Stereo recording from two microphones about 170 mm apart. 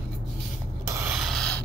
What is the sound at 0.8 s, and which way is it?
Rub, 15° right (ahead or behind).